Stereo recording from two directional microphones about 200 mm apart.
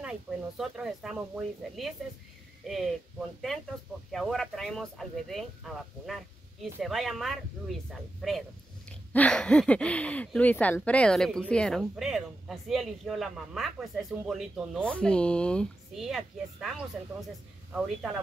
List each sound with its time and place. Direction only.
0.0 s speech: 5° right (ahead or behind)
4.1 s speech: centre (ahead or behind)